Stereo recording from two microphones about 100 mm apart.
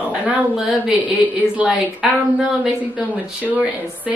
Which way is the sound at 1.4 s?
15° left (ahead or behind).